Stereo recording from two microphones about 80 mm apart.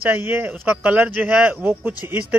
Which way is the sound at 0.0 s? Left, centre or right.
Right.